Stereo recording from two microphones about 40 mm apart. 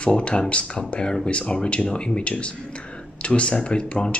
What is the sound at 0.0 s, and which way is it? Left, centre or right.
Speech, left.